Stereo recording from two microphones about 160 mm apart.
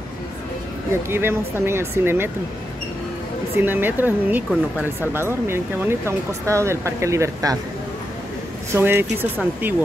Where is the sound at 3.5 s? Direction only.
15° right (ahead or behind).